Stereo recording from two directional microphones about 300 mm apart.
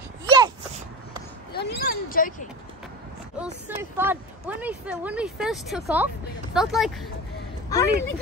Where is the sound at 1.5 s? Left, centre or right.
Left.